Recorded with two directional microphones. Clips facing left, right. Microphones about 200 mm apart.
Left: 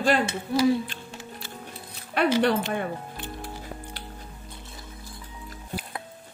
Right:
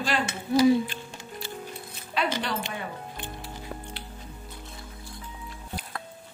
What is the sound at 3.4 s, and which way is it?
Music, 45° left (ahead or behind).